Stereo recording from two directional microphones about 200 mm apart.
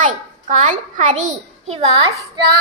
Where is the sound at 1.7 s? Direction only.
20° right (ahead or behind).